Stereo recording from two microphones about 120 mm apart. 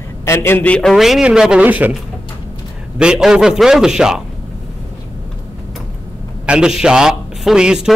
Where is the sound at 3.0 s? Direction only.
5° right (ahead or behind).